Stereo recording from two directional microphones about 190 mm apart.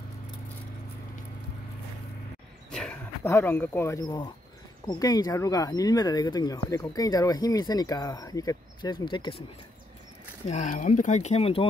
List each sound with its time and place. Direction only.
2.7 s a sound: 5° left (ahead or behind)
3.3 s speech: 10° left (ahead or behind)
10.5 s speech: 40° left (ahead or behind)